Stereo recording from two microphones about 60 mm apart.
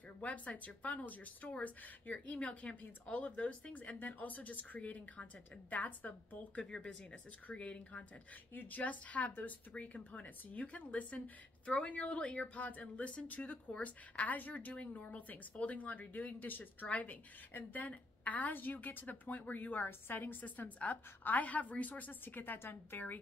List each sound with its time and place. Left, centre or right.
0.2 s a woman's voice: left
6.6 s a woman's voice: centre; by 23.1 s left